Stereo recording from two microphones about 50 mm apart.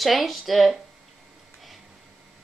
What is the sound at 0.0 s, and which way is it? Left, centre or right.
Speech, centre.